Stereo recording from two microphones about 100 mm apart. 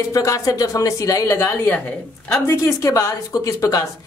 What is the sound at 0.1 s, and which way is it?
A woman's voice, 35° left (ahead or behind).